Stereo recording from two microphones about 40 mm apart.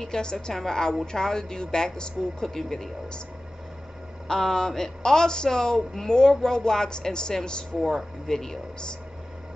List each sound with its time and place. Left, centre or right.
0.0 s speech: centre
4.3 s speech: centre